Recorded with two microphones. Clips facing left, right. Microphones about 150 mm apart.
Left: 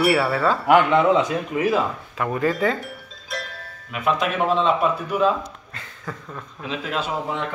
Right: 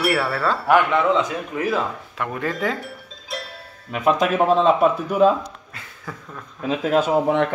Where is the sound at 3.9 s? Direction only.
35° right (ahead or behind).